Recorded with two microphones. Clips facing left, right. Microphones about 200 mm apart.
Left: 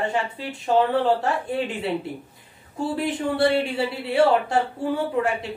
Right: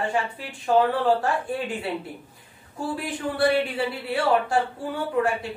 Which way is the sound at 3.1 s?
25° left (ahead or behind).